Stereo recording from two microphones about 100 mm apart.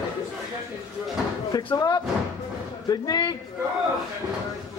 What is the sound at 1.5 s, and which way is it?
Speech, 40° left (ahead or behind).